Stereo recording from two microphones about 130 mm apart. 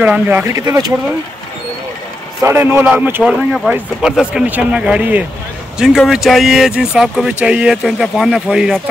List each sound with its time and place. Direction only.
0.0 s speech: 10° right (ahead or behind)
2.4 s speech: 15° right (ahead or behind)